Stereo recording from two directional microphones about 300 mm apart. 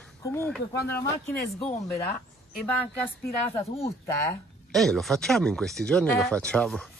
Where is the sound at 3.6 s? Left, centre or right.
Centre.